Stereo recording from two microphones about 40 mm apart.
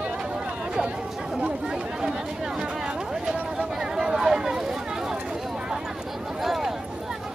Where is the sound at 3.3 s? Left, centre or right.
Centre.